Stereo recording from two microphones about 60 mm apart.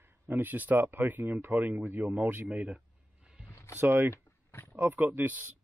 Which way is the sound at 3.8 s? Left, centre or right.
Right.